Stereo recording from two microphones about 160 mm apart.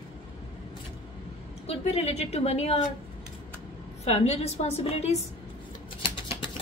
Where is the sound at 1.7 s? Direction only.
40° left (ahead or behind).